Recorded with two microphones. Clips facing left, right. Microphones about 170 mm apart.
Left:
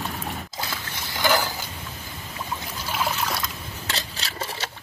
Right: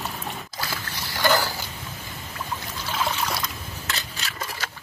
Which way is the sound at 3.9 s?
35° left (ahead or behind).